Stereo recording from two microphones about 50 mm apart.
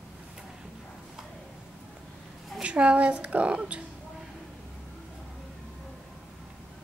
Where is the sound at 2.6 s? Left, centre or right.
Right.